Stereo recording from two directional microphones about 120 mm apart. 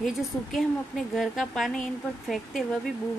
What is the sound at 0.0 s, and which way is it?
A woman's voice, centre (ahead or behind).